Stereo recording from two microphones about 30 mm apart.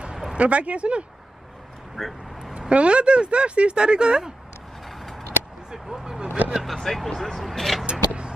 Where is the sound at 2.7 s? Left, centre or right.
Right.